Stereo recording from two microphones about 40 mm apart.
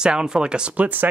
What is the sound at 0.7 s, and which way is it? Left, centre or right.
Speech, right.